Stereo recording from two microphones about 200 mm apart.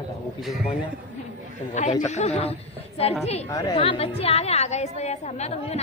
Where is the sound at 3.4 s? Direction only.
20° left (ahead or behind).